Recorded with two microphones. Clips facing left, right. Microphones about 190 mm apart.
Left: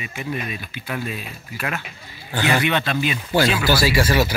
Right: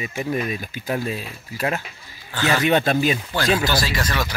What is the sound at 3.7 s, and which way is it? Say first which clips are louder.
Speech: left 5 dB; 10° left (ahead or behind).